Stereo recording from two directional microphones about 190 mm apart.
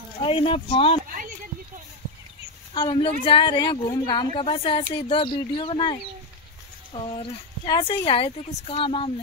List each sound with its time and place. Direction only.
0.2 s a woman's voice: 25° left (ahead or behind)
2.7 s a woman's voice: 25° left (ahead or behind)